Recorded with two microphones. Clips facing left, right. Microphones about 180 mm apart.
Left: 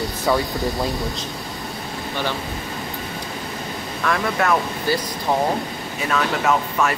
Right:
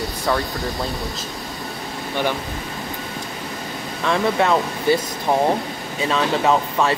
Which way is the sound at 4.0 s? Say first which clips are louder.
Right 3 dB; 20° right (ahead or behind).